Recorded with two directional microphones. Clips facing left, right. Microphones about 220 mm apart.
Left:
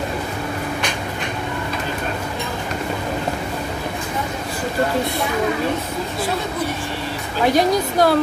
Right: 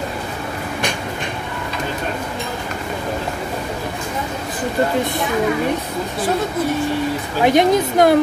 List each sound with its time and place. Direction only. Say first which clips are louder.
7.4 s speech: right 3 dB; 20° right (ahead or behind)